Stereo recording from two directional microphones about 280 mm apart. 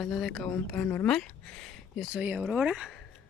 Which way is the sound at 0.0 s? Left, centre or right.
Centre.